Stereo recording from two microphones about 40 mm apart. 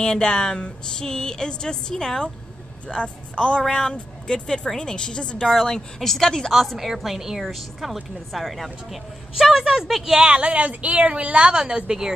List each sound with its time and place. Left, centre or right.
0.0 s speech: centre
2.9 s a woman's voice: left
3.6 s a woman's voice: centre
5.5 s a woman's voice: centre
10.1 s a woman's voice: right